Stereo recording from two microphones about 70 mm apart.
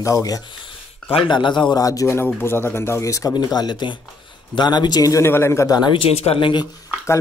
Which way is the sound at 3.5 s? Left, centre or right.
Left.